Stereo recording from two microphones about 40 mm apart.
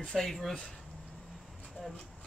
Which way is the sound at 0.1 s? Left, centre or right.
Centre.